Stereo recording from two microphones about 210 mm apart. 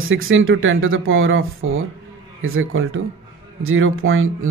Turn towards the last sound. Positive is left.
turn(degrees=-75)  # may be behind; listen again after turning